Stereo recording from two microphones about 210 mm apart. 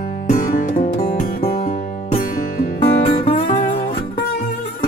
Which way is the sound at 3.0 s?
35° left (ahead or behind).